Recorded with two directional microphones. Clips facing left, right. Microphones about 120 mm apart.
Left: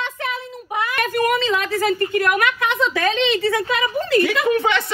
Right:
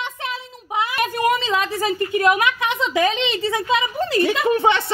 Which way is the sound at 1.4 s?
25° right (ahead or behind).